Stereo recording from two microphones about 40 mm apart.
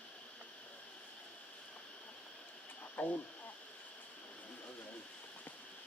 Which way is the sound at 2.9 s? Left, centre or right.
Left.